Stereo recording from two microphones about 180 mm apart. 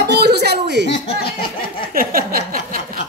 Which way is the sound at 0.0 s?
65° right (ahead or behind).